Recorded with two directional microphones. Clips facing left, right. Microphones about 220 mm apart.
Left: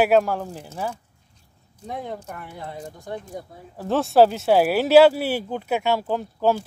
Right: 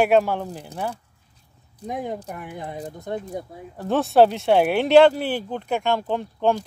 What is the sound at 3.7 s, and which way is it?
Speech, centre (ahead or behind).